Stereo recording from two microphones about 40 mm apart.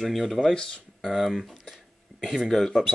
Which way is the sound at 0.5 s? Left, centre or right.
Left.